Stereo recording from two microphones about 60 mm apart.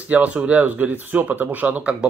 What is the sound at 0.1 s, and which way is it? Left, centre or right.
Speech, right.